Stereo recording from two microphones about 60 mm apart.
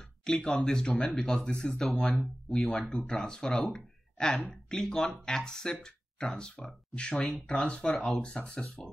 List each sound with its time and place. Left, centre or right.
0.2 s speech: centre